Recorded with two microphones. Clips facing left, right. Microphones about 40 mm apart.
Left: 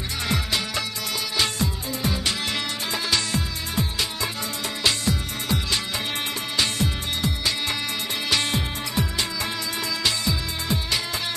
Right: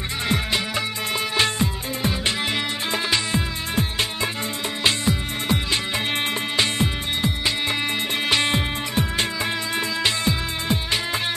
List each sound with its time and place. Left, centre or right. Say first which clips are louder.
0.3 s music: right 3 dB; right
3.7 s music: right 2 dB; right